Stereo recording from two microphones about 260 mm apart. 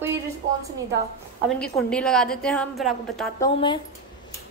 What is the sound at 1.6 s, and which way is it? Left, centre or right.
A woman's voice, centre.